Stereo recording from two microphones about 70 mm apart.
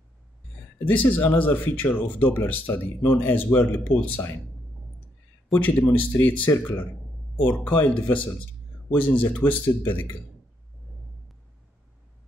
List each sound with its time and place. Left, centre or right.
0.8 s speech: left
5.6 s speech: left